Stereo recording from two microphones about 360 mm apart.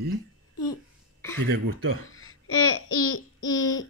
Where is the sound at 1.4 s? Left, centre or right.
Right.